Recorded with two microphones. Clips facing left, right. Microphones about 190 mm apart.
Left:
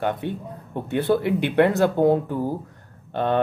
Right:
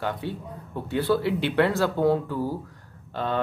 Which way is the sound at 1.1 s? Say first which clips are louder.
Left 2 dB; 50° left (ahead or behind).